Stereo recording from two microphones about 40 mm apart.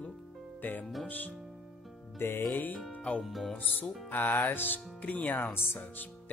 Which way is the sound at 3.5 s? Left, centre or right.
Left.